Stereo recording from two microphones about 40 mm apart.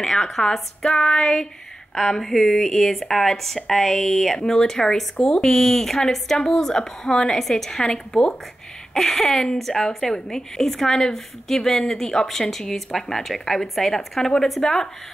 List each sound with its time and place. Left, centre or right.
0.0 s a woman's voice: centre
1.1 s female singing: left
2.0 s a woman's voice: centre
7.3 s a woman's voice: centre
8.9 s a woman's voice: centre